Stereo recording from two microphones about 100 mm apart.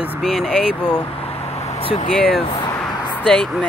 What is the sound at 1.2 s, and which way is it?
Vehicle, 90° left.